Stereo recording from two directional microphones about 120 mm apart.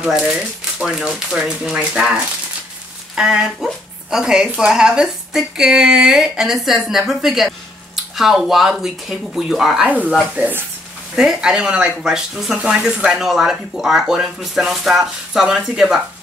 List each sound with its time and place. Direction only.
0.0 s speech: 10° right (ahead or behind)
3.2 s speech: 5° right (ahead or behind)
9.8 s speech: 10° right (ahead or behind)